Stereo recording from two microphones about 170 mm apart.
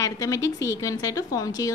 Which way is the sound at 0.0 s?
20° left (ahead or behind).